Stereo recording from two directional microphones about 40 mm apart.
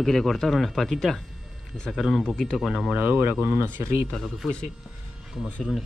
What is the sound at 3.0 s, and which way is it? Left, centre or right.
Speech, right.